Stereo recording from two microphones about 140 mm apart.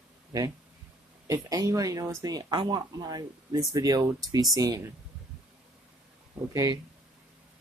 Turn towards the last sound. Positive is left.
turn(degrees=-25)  # may be behind; listen again after turning